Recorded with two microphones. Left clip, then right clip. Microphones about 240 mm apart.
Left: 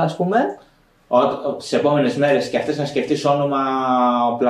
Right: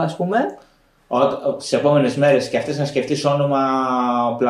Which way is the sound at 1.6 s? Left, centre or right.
Centre.